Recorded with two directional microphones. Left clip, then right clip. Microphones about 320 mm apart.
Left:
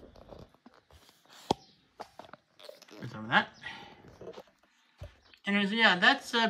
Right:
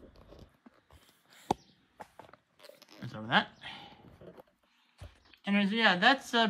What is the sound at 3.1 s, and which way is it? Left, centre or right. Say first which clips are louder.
Dog: left 1 dB; centre.